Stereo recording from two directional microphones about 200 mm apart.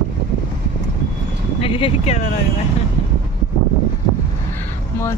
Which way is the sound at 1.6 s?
30° left (ahead or behind).